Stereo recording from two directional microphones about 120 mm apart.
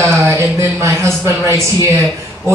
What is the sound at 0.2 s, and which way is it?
A man's voice, 20° right (ahead or behind).